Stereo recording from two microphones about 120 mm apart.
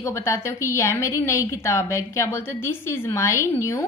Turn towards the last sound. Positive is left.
turn(degrees=20)  # may be behind; listen again after turning